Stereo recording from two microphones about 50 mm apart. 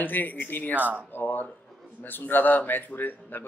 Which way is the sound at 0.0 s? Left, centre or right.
Left.